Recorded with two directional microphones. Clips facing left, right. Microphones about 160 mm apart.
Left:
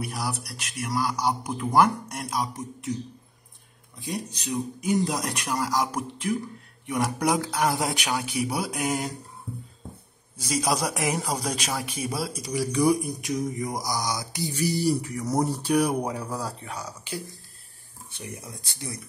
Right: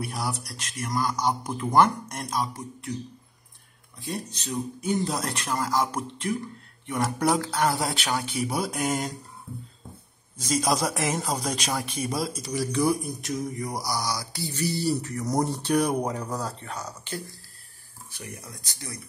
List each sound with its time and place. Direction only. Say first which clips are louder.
0.0 s speech: even; 5° left (ahead or behind)
0.5 s mantra: left 1 dB; 5° left (ahead or behind)
4.0 s mantra: left 1 dB; 15° left (ahead or behind)
10.3 s mantra: right 1 dB; 10° left (ahead or behind)
18.1 s speech: left 2 dB; 20° left (ahead or behind)